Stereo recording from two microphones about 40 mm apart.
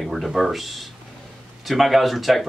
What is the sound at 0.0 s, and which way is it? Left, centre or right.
Speech, centre.